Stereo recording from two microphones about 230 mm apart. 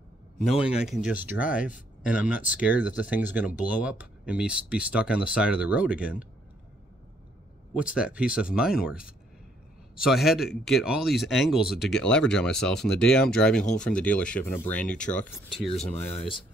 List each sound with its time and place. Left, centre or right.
0.4 s speech: centre
7.7 s speech: centre
15.8 s speech: left